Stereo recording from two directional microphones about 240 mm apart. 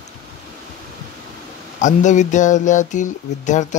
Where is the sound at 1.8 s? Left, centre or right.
Left.